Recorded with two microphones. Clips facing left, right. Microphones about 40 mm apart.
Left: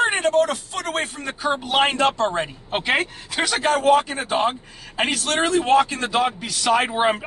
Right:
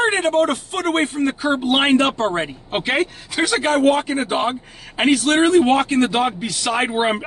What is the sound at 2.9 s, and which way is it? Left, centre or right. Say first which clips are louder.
Speech: right 1 dB; centre.